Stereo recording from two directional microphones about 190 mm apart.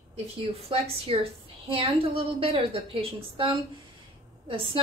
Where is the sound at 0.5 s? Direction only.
30° right (ahead or behind).